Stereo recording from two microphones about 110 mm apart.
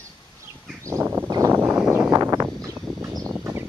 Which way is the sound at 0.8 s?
25° right (ahead or behind).